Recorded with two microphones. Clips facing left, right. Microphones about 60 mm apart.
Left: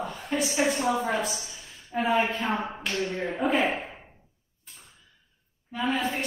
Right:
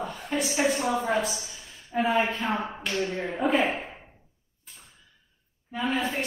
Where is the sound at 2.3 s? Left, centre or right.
Centre.